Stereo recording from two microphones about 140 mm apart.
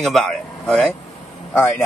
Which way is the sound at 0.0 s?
Centre (ahead or behind).